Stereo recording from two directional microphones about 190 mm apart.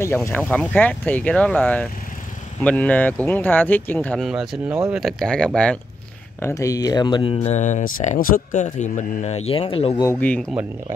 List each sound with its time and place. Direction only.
0.0 s speech: 15° left (ahead or behind)
6.4 s speech: 15° left (ahead or behind)
7.3 s speech: 35° left (ahead or behind)
10.0 s speech: 10° left (ahead or behind)